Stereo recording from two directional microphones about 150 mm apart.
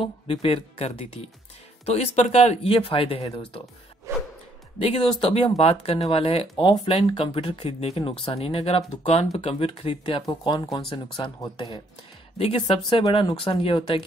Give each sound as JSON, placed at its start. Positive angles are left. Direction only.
{"t": 0.0, "sound": "speech", "side_deg": 40}
{"t": 4.1, "sound": "music", "side_deg": -20}
{"t": 4.8, "sound": "speech", "side_deg": 40}
{"t": 6.5, "sound": "speech", "side_deg": 30}
{"t": 6.8, "sound": "speech", "side_deg": 40}